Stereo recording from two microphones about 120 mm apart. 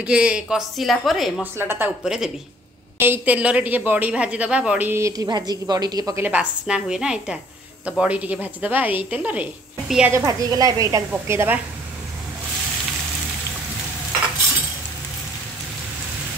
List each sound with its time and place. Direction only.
0.0 s speech: 10° right (ahead or behind)
1.4 s a woman's voice: 20° right (ahead or behind)
2.0 s speech: 5° right (ahead or behind)
3.0 s a woman's voice: 15° right (ahead or behind); by 6.1 s 35° right (ahead or behind)
6.1 s a woman's voice: 15° right (ahead or behind)
10.1 s a woman's voice: 30° right (ahead or behind)